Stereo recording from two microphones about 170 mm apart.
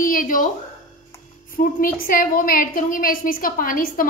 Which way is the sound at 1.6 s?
55° left (ahead or behind).